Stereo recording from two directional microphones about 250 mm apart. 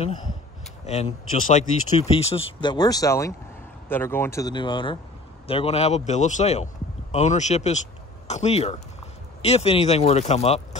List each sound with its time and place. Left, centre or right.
1.5 s a man's voice: left